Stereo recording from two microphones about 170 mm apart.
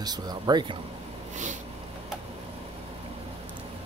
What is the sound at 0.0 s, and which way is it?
Speech, 25° right (ahead or behind).